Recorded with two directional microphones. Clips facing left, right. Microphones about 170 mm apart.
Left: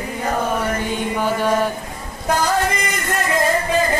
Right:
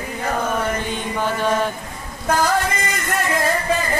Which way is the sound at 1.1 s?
10° left (ahead or behind).